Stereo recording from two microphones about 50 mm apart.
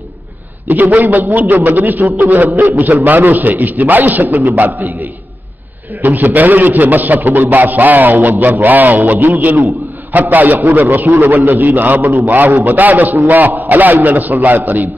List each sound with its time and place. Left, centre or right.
0.7 s a man's voice: right